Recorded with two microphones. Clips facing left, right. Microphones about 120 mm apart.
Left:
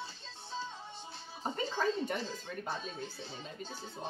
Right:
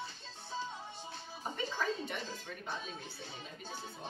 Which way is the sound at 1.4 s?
45° left (ahead or behind).